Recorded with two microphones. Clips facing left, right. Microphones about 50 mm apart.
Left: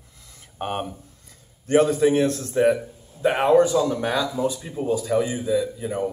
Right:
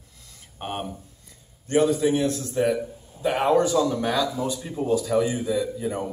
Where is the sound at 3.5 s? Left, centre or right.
Centre.